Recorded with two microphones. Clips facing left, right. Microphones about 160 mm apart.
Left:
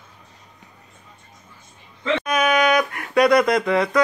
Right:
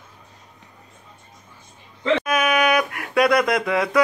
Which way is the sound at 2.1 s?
5° right (ahead or behind).